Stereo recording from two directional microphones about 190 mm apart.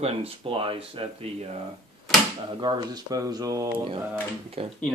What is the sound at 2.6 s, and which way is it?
Speech, 20° right (ahead or behind).